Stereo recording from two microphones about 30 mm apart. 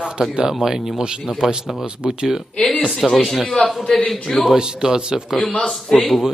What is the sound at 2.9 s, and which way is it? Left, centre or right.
A man's voice, centre.